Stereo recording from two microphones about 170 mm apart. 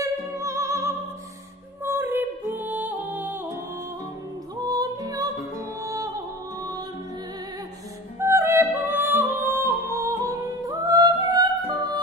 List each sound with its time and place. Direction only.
0.0 s music: 20° right (ahead or behind)
1.9 s female singing: 10° right (ahead or behind)
2.6 s music: 10° right (ahead or behind)
4.6 s music: 25° right (ahead or behind)
8.2 s music: 15° right (ahead or behind)